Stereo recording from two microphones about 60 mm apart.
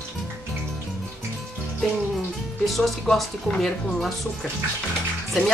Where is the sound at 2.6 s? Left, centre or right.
Centre.